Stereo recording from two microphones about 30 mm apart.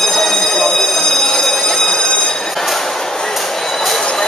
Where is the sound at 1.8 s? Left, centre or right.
Left.